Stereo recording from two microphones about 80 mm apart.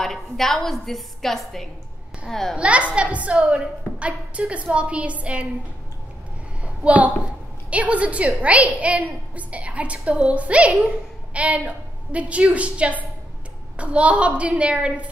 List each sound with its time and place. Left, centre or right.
0.0 s a woman's voice: centre
2.5 s a woman's voice: centre
6.6 s a sound: centre
7.7 s a woman's voice: centre